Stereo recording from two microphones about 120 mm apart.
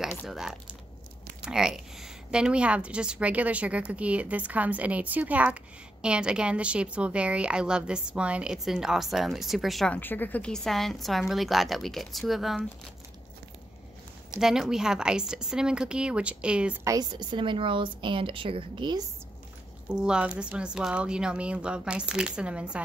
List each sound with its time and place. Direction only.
0.3 s a woman's voice: 5° right (ahead or behind)
9.9 s a woman's voice: 15° left (ahead or behind); by 12.6 s centre (ahead or behind)
14.3 s a woman's voice: 5° right (ahead or behind)
16.8 s a woman's voice: 30° right (ahead or behind)
19.9 s a woman's voice: 5° right (ahead or behind)